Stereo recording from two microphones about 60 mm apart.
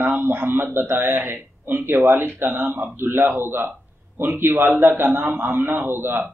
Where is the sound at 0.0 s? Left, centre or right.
Right.